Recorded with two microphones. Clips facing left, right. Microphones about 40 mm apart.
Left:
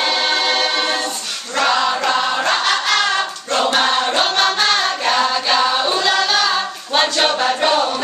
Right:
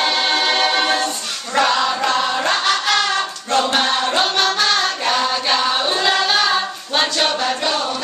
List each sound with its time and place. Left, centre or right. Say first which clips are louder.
0.0 s choir: even; centre
3.8 s music: left 1 dB; centre
5.7 s singing: left 1 dB; centre
6.9 s a capella: left 2 dB; centre
7.6 s chant: left 5 dB; centre